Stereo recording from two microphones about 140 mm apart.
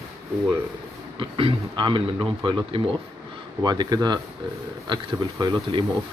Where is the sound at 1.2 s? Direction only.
40° right (ahead or behind).